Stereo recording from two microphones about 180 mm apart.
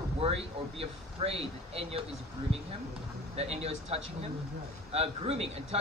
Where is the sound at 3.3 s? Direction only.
35° right (ahead or behind).